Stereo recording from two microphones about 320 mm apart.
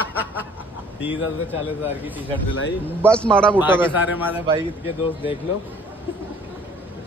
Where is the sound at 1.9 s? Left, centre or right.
Centre.